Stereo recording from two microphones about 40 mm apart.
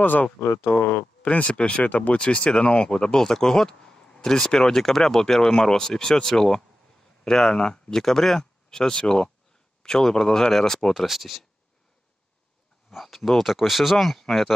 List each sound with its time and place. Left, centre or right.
0.0 s speech: left
1.5 s speech: left; by 11.1 s centre
11.1 s speech: centre
12.9 s speech: centre